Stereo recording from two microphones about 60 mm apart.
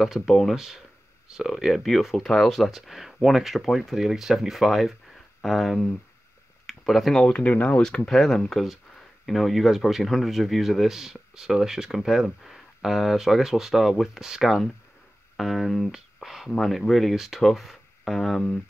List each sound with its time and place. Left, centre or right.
0.0 s speech: centre
6.6 s a sound: centre
7.2 s speech: centre
7.8 s speech: centre